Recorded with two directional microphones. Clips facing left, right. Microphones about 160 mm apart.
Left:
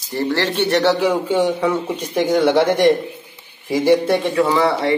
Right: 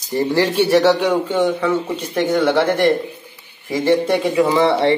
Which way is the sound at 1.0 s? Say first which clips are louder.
Even; 10° left (ahead or behind).